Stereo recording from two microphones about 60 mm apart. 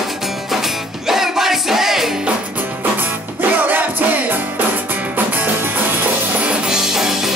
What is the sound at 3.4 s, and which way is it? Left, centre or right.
Music, right.